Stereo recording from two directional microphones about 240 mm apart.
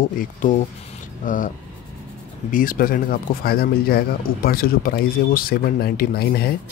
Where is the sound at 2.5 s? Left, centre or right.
Left.